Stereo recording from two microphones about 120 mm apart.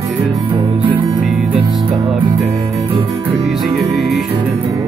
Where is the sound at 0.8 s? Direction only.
45° right (ahead or behind).